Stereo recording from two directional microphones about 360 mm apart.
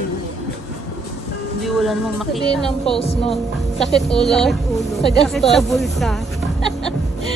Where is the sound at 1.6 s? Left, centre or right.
Centre.